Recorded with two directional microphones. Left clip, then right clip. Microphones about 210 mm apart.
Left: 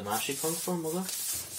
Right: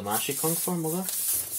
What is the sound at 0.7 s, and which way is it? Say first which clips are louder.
Speech: right 2 dB; 45° right (ahead or behind).